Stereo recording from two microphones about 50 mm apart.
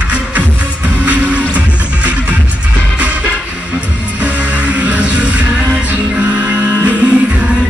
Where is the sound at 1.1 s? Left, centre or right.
Right.